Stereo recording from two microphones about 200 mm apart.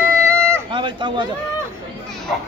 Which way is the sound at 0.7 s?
25° right (ahead or behind).